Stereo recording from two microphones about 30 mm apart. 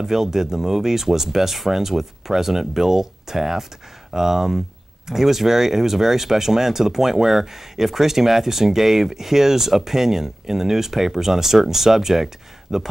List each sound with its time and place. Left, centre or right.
0.0 s speech: centre